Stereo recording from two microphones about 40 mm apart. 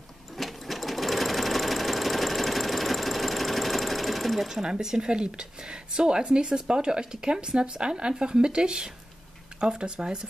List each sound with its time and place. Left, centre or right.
0.4 s sewing machine: centre
4.5 s speech: centre